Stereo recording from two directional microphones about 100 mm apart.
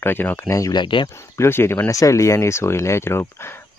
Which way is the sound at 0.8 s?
55° left (ahead or behind).